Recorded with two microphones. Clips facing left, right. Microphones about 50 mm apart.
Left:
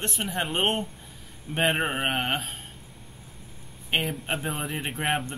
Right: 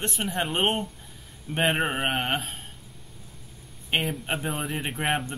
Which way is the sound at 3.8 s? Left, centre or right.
Centre.